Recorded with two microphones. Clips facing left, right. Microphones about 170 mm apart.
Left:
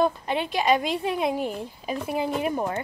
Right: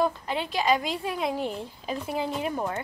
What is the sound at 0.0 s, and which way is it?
A woman's voice, 20° left (ahead or behind).